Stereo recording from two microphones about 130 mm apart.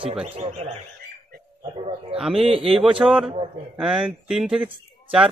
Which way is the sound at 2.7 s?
5° right (ahead or behind).